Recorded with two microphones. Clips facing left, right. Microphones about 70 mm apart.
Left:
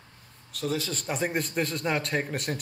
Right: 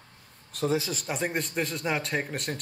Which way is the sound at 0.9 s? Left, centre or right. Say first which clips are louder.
Left 1 dB; centre.